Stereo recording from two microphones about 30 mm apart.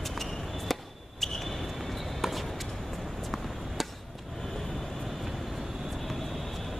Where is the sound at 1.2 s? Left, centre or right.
Centre.